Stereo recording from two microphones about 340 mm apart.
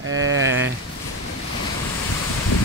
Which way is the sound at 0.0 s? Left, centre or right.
Right.